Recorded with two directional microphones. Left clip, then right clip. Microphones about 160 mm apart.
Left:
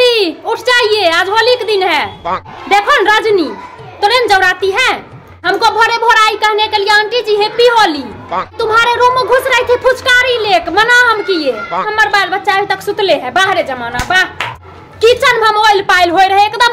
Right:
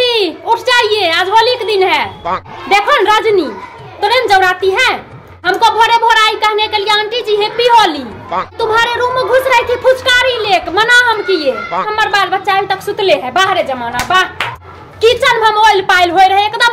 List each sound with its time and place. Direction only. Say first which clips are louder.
0.0 s a sound: left 2 dB; 30° left (ahead or behind)
2.3 s speech: even; centre (ahead or behind)
2.7 s a child's voice: even; 25° left (ahead or behind)